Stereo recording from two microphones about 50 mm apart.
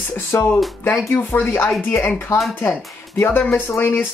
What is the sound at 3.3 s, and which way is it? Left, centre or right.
Speech, left.